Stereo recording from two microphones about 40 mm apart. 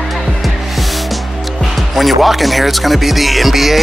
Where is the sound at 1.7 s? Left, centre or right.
Centre.